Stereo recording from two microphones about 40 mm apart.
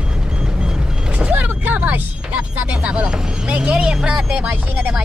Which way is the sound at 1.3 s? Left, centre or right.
Right.